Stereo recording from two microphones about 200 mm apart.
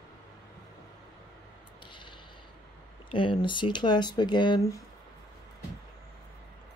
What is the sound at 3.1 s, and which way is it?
Speech, 25° left (ahead or behind).